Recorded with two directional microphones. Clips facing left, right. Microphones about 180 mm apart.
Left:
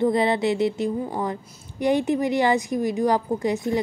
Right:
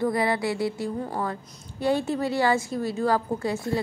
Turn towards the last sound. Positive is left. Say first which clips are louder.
# left 4 dB
turn(degrees=20)  # may be behind; listen again after turning